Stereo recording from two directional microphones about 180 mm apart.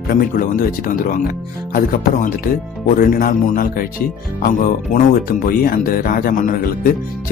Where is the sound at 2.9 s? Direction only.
55° left (ahead or behind).